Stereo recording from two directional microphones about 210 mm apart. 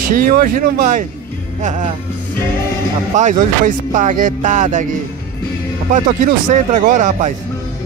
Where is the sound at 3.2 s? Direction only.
35° right (ahead or behind).